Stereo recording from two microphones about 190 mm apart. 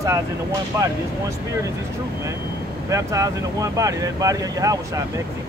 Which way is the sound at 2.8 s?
15° right (ahead or behind).